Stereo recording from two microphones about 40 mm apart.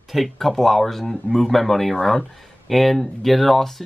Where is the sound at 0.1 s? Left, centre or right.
Centre.